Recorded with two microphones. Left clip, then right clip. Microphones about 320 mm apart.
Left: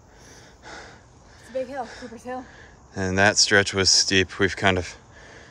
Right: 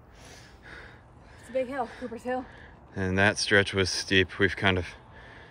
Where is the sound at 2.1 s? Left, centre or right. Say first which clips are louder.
Right 2 dB; right.